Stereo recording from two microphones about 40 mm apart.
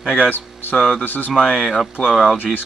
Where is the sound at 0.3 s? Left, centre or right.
Left.